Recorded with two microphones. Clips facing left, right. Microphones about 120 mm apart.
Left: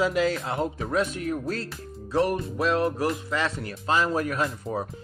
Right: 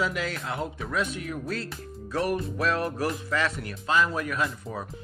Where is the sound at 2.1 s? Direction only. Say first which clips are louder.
Left 3 dB; 25° left (ahead or behind).